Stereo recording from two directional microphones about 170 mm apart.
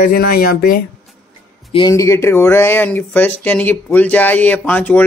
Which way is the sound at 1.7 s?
30° left (ahead or behind).